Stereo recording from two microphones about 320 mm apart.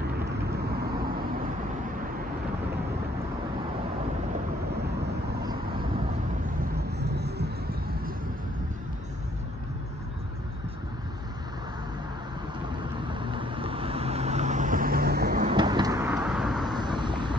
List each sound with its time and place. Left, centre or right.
7.0 s vehicle: right
13.1 s vehicle: centre
16.6 s vehicle: centre